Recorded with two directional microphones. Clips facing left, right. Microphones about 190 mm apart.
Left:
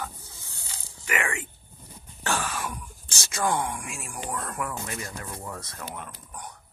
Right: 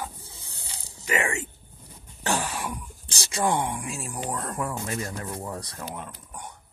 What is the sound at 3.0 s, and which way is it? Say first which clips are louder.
Speech: right 2 dB; 30° right (ahead or behind).